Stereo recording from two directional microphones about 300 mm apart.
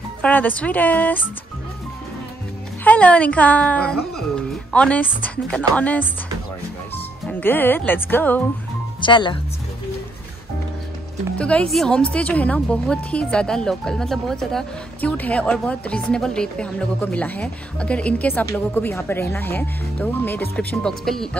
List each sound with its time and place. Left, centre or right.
0.2 s a woman's voice: centre
2.8 s a woman's voice: centre
7.2 s speech: centre
11.3 s a woman's voice: centre